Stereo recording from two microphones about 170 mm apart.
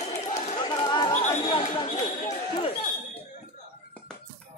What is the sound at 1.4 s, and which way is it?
Basketball bounce, 30° left (ahead or behind).